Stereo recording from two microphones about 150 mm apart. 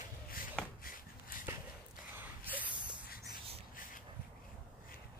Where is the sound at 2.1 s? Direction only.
10° right (ahead or behind).